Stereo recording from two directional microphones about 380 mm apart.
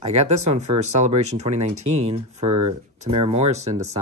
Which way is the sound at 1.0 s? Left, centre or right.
Centre.